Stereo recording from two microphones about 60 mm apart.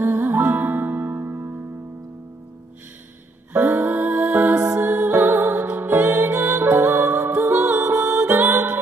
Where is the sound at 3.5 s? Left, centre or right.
Right.